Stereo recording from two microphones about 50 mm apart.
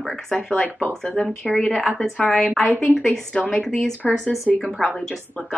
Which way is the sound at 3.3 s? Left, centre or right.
Left.